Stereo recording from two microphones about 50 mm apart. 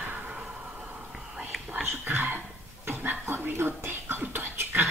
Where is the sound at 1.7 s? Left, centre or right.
Right.